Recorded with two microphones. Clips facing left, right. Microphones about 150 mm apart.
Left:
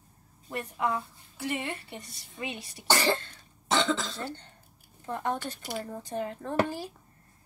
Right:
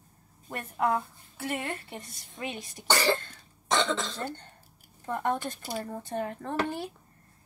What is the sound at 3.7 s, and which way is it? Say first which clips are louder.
Speech: even; centre (ahead or behind).